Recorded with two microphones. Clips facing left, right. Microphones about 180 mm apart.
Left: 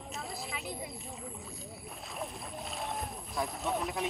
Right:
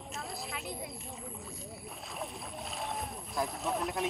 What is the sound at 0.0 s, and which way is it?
Speech, centre (ahead or behind).